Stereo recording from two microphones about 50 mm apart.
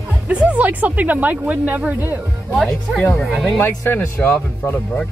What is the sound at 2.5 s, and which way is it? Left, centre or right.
Speech, centre.